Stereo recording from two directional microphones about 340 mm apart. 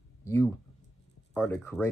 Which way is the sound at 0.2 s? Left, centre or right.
Centre.